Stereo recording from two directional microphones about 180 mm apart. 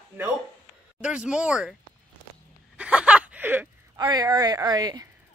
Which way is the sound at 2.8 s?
5° right (ahead or behind).